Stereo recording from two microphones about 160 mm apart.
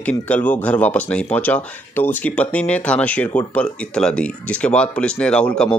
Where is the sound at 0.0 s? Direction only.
10° left (ahead or behind).